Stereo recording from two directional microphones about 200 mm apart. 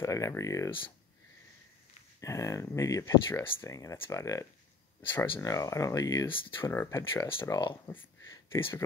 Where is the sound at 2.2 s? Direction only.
15° left (ahead or behind).